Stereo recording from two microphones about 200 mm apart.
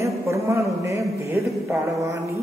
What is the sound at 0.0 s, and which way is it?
A man's voice, 15° right (ahead or behind).